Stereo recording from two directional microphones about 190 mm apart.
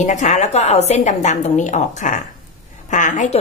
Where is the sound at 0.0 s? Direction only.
40° left (ahead or behind).